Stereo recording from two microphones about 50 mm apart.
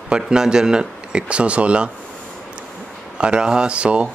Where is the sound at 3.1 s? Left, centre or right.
Right.